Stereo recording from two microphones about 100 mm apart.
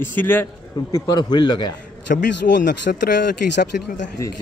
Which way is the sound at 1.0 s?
45° left (ahead or behind).